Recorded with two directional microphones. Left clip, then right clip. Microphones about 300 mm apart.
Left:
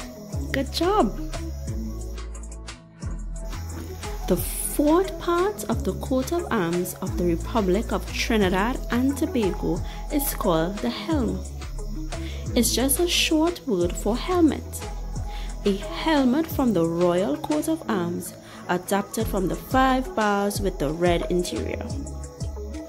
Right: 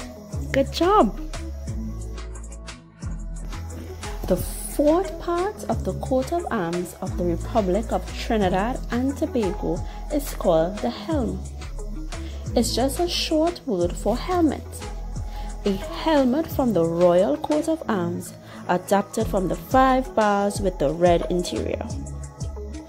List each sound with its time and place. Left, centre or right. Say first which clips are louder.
0.5 s speech: right 4 dB; centre
4.0 s speech: right 2 dB; centre
12.7 s speech: left 1 dB; centre
15.7 s a woman's voice: right 2 dB; centre